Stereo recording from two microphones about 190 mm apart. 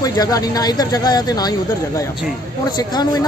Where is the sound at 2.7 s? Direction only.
20° left (ahead or behind).